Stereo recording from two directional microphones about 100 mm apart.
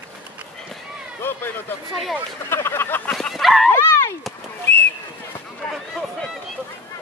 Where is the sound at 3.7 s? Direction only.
25° left (ahead or behind).